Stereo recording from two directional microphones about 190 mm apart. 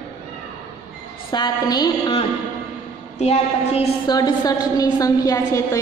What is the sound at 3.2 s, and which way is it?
Speech, 35° left (ahead or behind).